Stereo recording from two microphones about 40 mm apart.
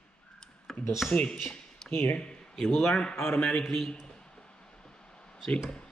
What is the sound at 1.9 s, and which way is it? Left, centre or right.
Speech, left.